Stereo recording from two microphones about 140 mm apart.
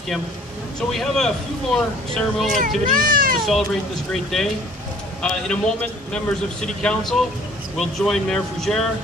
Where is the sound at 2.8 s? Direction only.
85° right.